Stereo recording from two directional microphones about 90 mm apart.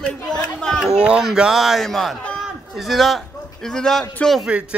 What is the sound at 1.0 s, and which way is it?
A man's voice, 10° right (ahead or behind).